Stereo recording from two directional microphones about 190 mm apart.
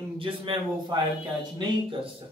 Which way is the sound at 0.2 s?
25° right (ahead or behind).